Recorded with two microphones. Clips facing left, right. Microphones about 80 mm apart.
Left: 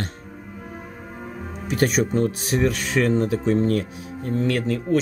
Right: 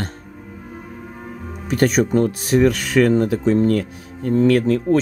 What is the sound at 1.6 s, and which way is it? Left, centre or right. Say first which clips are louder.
Speech: right 4 dB; right.